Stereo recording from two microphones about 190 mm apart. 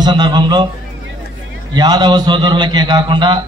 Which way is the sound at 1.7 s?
20° right (ahead or behind).